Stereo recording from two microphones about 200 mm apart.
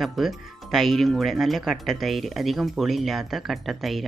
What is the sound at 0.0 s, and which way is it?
Speech, centre (ahead or behind).